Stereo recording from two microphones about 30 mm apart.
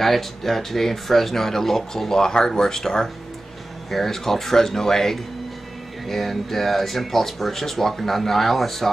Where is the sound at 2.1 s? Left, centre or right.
Left.